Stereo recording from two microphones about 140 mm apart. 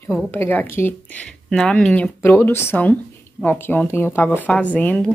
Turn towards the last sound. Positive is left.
turn(degrees=10)  # may be behind; listen again after turning